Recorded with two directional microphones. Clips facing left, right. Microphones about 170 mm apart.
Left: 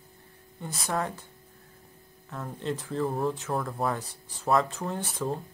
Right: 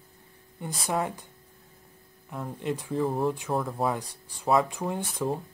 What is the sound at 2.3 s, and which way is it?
Speech, 15° right (ahead or behind).